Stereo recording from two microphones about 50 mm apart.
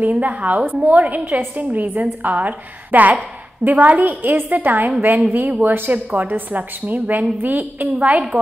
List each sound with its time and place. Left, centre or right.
0.0 s a woman's voice: right